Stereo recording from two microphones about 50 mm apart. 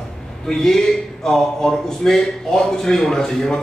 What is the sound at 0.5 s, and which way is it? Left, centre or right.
A man's voice, centre.